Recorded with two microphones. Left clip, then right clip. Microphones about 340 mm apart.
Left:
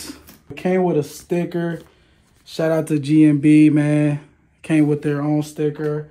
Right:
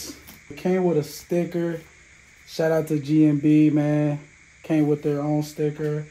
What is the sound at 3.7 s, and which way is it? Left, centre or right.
Speech, left.